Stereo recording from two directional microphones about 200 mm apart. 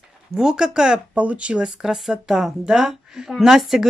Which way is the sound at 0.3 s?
5° right (ahead or behind).